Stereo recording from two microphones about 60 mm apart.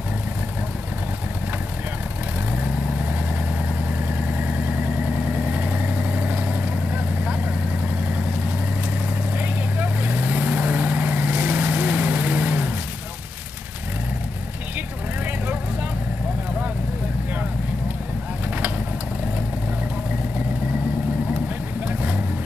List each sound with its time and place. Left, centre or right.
4.1 s vehicle: right
9.4 s vehicle: right
21.8 s vehicle: right